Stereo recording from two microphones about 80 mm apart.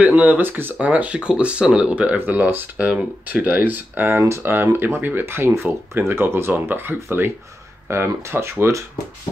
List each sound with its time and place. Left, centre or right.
0.0 s speech: right